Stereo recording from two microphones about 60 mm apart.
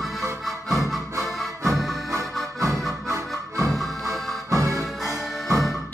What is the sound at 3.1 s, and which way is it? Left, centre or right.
Music, right.